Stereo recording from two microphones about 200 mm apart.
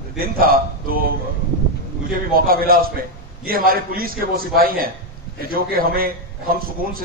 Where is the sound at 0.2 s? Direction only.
45° right (ahead or behind).